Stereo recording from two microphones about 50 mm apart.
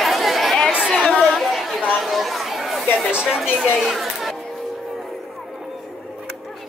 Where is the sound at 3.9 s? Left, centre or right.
Centre.